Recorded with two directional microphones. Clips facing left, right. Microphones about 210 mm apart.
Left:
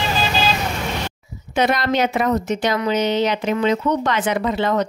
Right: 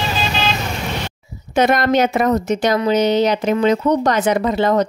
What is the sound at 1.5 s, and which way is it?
A woman's voice, 45° right (ahead or behind).